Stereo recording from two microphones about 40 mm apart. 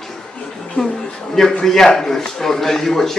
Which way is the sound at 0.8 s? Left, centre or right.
Left.